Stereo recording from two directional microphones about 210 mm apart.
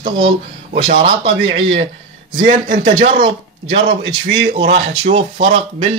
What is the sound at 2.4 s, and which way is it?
Speech, 25° right (ahead or behind).